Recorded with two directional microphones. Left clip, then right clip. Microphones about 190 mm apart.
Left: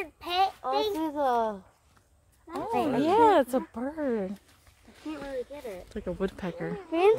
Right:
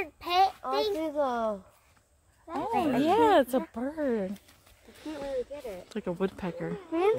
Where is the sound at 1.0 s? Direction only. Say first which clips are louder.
Left 2 dB; 50° left (ahead or behind).